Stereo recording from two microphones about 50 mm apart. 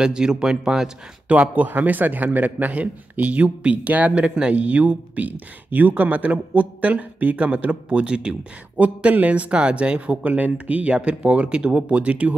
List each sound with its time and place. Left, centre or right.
0.0 s speech: centre
1.3 s a man's voice: right
8.7 s speech: right